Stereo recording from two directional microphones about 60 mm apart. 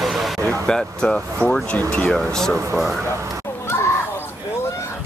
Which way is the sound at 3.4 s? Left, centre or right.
Left.